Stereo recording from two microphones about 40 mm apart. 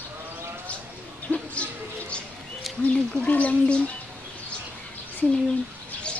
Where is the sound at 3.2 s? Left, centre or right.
Left.